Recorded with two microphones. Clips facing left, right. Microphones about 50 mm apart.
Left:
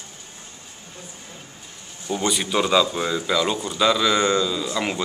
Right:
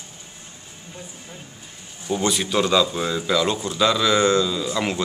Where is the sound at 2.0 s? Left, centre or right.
Centre.